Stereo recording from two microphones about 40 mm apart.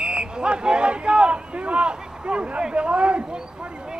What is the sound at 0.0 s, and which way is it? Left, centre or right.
Speech, right.